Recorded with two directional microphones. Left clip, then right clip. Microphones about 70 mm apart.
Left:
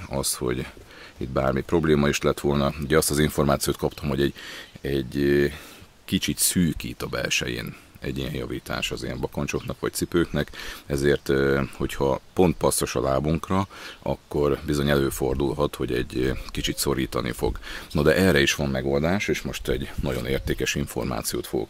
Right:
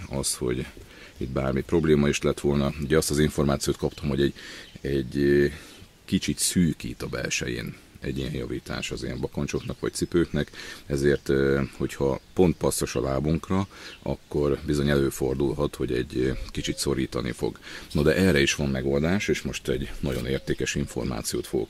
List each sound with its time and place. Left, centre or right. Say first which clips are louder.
0.1 s speech: left 2 dB; left